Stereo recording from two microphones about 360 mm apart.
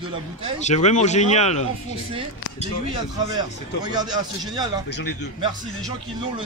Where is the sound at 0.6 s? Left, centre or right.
Centre.